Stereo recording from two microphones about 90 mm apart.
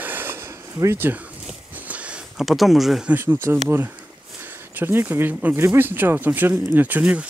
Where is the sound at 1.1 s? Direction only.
20° right (ahead or behind); by 3.0 s centre (ahead or behind).